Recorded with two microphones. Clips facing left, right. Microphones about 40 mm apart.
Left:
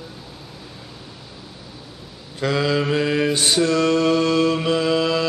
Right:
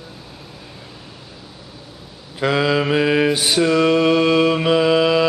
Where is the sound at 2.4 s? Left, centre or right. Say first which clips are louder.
Right 3 dB; centre.